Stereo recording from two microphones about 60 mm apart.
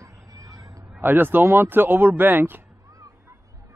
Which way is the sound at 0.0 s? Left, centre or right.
Right.